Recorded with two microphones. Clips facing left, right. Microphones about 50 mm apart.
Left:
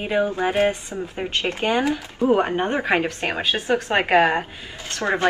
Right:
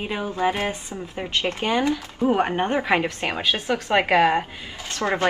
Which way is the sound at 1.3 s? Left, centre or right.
Left.